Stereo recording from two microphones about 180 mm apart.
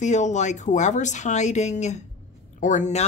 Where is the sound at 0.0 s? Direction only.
40° left (ahead or behind).